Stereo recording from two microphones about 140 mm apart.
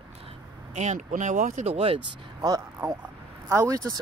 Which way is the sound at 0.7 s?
60° right (ahead or behind).